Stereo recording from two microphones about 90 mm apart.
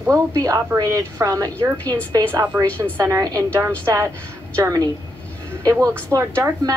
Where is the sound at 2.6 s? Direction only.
35° right (ahead or behind).